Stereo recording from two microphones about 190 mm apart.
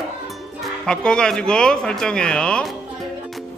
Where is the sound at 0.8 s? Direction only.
5° left (ahead or behind).